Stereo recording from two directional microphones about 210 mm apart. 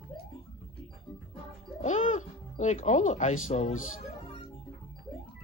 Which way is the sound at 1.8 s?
35° left (ahead or behind).